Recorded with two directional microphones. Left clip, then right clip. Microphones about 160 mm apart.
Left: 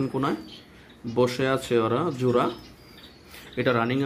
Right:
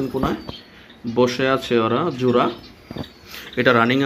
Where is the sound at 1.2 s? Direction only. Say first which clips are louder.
Right 5 dB; 10° left (ahead or behind).